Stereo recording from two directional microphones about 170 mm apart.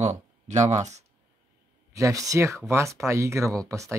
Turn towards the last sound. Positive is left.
turn(degrees=-15)  # may be behind; listen again after turning